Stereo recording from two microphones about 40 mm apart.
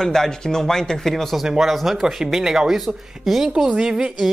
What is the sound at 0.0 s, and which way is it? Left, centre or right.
Speech, centre.